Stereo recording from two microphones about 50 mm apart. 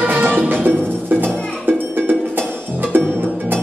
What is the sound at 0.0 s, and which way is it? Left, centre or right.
Music, right.